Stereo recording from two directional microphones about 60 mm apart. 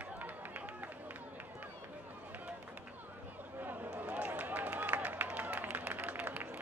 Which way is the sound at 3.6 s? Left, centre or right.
Right.